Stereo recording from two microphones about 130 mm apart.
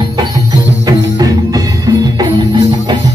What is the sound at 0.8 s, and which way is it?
Music, 30° right (ahead or behind).